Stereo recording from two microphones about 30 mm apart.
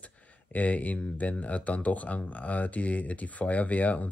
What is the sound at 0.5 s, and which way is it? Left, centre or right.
Speech, left.